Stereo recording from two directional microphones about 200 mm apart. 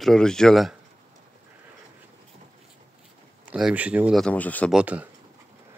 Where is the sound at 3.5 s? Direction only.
5° right (ahead or behind).